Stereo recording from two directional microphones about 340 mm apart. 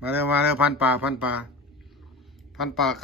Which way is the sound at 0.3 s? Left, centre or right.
Centre.